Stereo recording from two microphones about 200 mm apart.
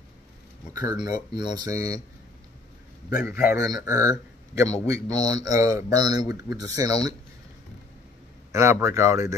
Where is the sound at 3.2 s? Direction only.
5° right (ahead or behind).